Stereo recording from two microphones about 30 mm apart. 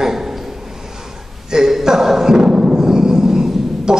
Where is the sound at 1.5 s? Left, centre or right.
Centre.